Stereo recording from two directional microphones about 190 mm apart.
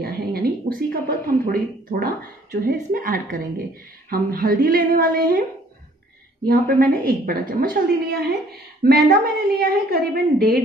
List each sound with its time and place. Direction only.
0.0 s a woman's voice: 50° right (ahead or behind)
6.4 s a woman's voice: 50° right (ahead or behind)